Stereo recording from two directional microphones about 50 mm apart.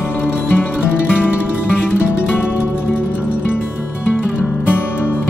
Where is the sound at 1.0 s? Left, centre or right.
Centre.